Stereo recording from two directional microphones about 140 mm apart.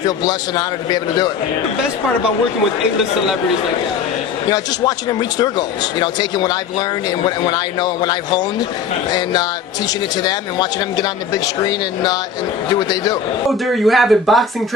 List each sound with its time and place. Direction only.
0.0 s speech: 30° left (ahead or behind)
5.4 s speech: 30° left (ahead or behind)
13.5 s speech: centre (ahead or behind)